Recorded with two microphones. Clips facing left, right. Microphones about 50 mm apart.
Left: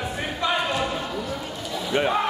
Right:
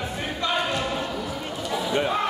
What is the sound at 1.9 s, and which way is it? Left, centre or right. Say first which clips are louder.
Speech: left 3 dB; centre.